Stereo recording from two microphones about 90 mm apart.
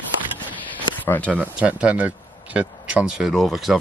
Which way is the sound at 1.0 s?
15° left (ahead or behind).